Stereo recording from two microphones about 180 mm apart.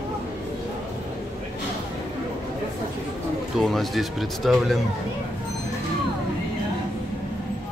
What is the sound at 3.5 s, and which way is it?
Speech, centre (ahead or behind).